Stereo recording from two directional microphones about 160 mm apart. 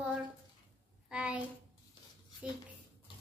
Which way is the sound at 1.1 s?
5° right (ahead or behind).